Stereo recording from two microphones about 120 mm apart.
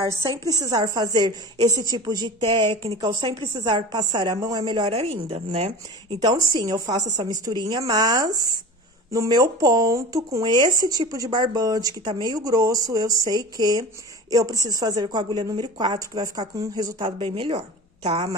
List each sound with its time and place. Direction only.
0.0 s speech: 30° right (ahead or behind)
4.6 s a woman's voice: 50° right (ahead or behind)
6.2 s speech: 30° right (ahead or behind)
17.2 s a woman's voice: 55° right (ahead or behind)